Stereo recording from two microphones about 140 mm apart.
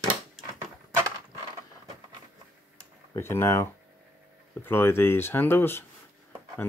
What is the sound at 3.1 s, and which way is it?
Speech, 15° left (ahead or behind).